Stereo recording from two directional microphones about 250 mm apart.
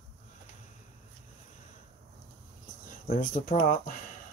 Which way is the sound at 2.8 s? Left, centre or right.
Left.